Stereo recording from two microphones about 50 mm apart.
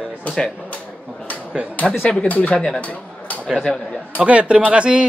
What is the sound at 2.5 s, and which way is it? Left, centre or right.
Speech, centre.